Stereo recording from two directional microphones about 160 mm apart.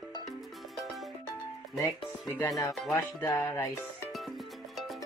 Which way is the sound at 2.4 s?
20° left (ahead or behind).